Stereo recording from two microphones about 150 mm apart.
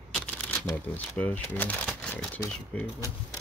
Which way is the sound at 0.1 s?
10° left (ahead or behind).